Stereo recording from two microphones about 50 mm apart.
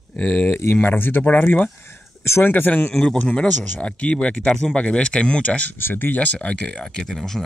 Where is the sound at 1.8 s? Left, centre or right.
Left.